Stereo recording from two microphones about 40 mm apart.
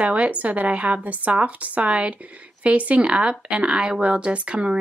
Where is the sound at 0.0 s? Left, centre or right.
Right.